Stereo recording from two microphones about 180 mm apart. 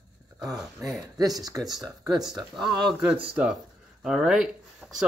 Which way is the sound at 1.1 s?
20° right (ahead or behind).